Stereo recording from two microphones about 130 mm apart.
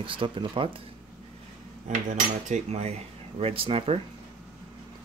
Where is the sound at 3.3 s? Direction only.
45° right (ahead or behind).